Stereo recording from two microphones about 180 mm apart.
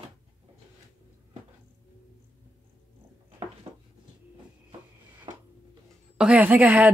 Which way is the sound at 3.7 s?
25° right (ahead or behind).